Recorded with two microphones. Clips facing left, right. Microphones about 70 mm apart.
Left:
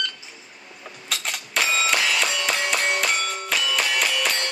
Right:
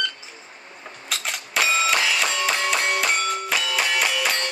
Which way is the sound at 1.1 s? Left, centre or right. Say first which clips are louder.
Even; centre.